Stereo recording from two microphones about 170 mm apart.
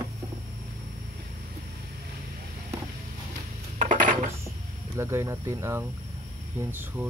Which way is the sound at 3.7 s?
50° right (ahead or behind).